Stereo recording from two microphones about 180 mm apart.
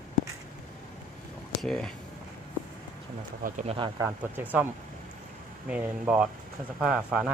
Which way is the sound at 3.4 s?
45° right (ahead or behind).